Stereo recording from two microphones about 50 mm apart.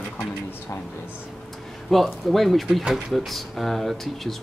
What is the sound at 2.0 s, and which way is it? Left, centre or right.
Speech, centre.